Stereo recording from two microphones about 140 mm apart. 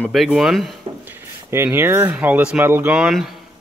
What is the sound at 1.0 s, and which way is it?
Speech, 15° right (ahead or behind).